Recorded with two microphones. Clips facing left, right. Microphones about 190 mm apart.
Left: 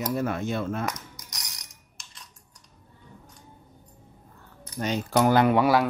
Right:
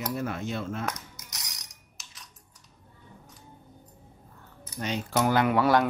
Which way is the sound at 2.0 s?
5° right (ahead or behind).